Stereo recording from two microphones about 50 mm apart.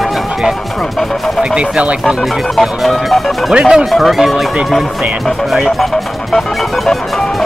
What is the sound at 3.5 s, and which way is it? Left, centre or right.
Speech, centre.